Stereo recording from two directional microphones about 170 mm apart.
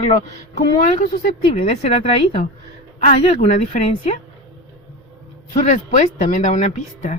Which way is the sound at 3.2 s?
40° left (ahead or behind).